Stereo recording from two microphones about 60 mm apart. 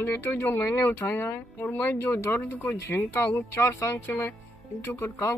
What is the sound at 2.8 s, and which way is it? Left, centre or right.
Speech, left.